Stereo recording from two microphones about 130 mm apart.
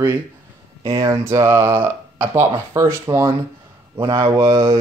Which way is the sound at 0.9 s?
20° right (ahead or behind).